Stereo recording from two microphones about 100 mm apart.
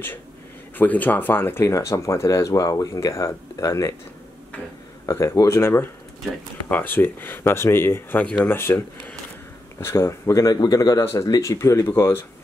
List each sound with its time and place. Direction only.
0.7 s speech: 15° left (ahead or behind); by 3.9 s 30° left (ahead or behind)
5.0 s speech: 30° left (ahead or behind)